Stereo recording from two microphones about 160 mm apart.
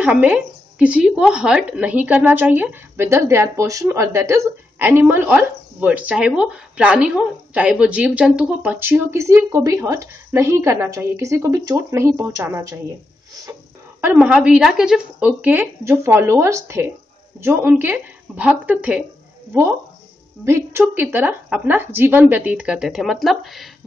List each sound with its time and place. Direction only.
0.0 s a woman's voice: 5° right (ahead or behind)
14.1 s a woman's voice: 5° right (ahead or behind)
20.4 s a woman's voice: 15° right (ahead or behind); by 23.7 s centre (ahead or behind)